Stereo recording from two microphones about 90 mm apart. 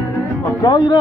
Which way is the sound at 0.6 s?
50° left (ahead or behind).